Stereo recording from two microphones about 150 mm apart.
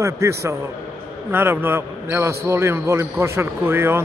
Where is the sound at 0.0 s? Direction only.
20° right (ahead or behind).